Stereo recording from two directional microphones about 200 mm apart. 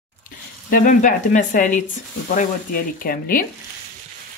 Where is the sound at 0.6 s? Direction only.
45° left (ahead or behind).